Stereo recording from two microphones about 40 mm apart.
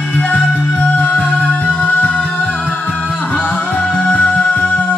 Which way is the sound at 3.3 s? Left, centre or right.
Left.